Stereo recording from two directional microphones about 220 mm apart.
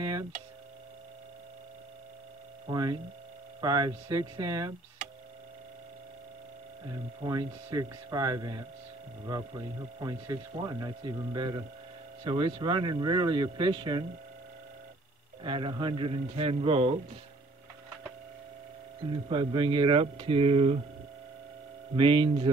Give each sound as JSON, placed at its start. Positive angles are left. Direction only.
{"t": 2.7, "sound": "speech", "side_deg": -15}
{"t": 7.2, "sound": "speech", "side_deg": -15}
{"t": 9.9, "sound": "speech", "side_deg": -20}
{"t": 15.4, "sound": "speech", "side_deg": -20}
{"t": 19.2, "sound": "speech", "side_deg": -20}
{"t": 21.9, "sound": "speech", "side_deg": -20}